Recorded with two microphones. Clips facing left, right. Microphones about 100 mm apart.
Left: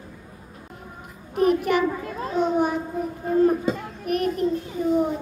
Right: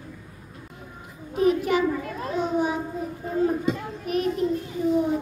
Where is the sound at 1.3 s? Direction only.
55° left (ahead or behind).